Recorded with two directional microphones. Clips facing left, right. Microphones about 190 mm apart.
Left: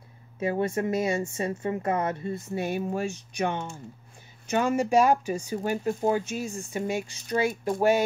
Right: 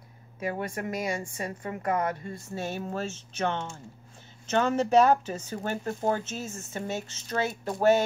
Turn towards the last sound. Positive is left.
turn(degrees=10)  # may be behind; listen again after turning